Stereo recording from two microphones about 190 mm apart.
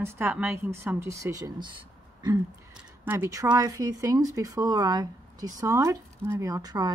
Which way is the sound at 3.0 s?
10° right (ahead or behind).